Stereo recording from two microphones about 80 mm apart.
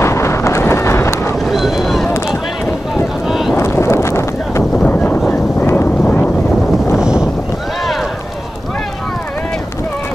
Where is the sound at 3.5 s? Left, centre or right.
Left.